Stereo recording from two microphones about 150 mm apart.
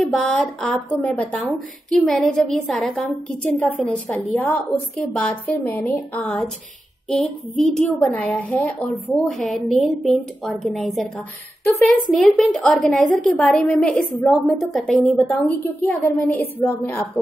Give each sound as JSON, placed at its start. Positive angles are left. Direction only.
{"t": 0.0, "sound": "a woman's voice", "side_deg": 0}